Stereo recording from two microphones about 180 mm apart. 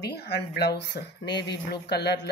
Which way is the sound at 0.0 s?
65° left (ahead or behind).